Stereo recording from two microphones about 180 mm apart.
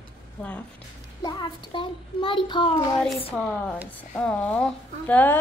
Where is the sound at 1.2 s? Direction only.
25° left (ahead or behind).